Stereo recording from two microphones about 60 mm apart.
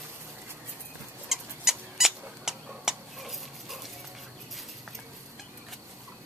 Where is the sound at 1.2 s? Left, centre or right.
Centre.